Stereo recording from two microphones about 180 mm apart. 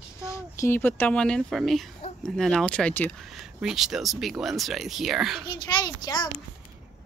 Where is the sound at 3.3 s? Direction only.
Centre (ahead or behind).